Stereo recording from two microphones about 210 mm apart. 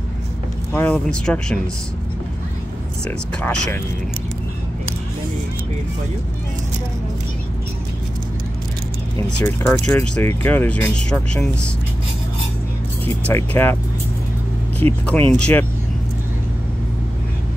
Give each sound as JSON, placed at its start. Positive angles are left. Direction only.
{"t": 0.7, "sound": "speech", "side_deg": 5}
{"t": 3.4, "sound": "speech", "side_deg": 10}
{"t": 9.4, "sound": "speech", "side_deg": 10}
{"t": 13.3, "sound": "speech", "side_deg": 10}
{"t": 14.8, "sound": "speech", "side_deg": -30}
{"t": 15.3, "sound": "speech", "side_deg": 5}